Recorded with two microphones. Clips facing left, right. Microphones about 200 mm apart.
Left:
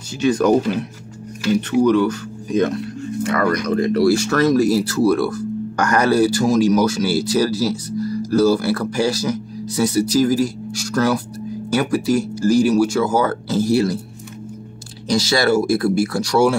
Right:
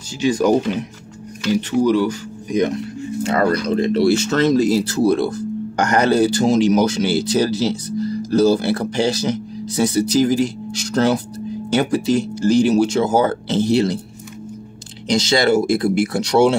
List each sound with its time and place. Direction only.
0.2 s speech: 10° right (ahead or behind)
1.8 s speech: 10° right (ahead or behind)
15.0 s speech: 20° right (ahead or behind)